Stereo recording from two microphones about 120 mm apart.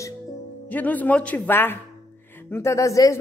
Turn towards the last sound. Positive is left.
turn(degrees=25)  # may be behind; listen again after turning